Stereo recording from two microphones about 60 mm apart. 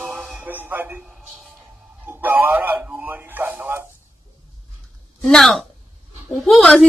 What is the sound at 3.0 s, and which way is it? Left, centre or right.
Speech, right.